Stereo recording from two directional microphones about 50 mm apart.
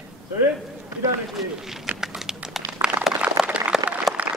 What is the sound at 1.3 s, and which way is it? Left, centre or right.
Speech, centre.